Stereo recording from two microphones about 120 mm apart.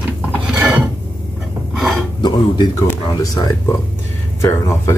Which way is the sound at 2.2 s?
40° left (ahead or behind).